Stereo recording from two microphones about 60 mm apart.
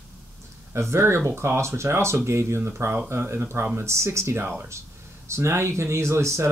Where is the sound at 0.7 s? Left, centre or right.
Right.